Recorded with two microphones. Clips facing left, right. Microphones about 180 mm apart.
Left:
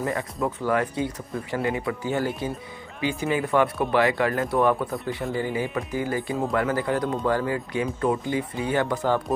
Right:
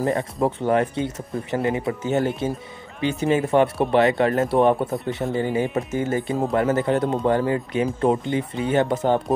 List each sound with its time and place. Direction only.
0.0 s speech: 20° right (ahead or behind)